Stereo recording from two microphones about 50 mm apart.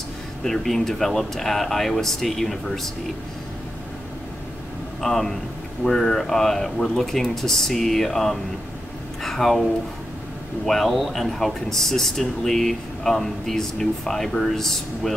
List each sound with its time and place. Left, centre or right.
0.4 s speech: centre
5.0 s speech: centre
9.2 s a sound: centre
10.6 s speech: centre